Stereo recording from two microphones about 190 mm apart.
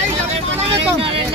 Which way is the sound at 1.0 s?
30° right (ahead or behind).